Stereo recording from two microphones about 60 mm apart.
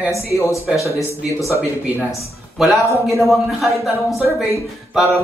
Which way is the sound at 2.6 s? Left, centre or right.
Centre.